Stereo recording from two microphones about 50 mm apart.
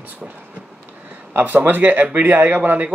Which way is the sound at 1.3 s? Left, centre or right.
Right.